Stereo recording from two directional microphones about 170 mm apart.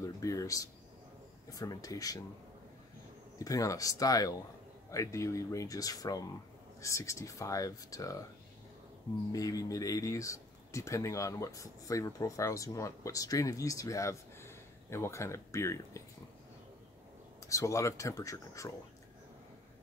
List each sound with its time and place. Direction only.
0.0 s speech: 20° left (ahead or behind)
3.3 s speech: 20° left (ahead or behind)
9.3 s speech: 20° left (ahead or behind)
17.4 s speech: 20° left (ahead or behind)